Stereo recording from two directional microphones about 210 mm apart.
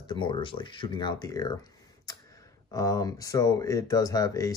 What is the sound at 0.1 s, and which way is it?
Speech, 20° left (ahead or behind).